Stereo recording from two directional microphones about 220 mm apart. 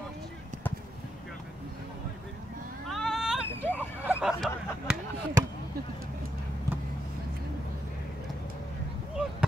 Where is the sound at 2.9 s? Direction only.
Centre (ahead or behind).